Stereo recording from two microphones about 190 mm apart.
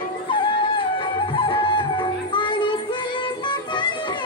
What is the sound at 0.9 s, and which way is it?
Music, 25° left (ahead or behind).